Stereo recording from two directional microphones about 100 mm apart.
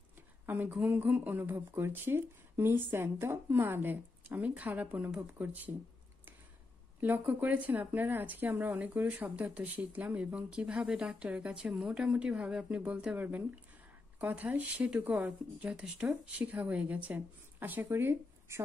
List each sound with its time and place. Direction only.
0.5 s speech: 20° right (ahead or behind)
7.0 s speech: 20° right (ahead or behind)